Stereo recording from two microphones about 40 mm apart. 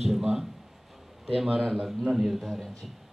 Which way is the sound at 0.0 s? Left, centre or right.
Centre.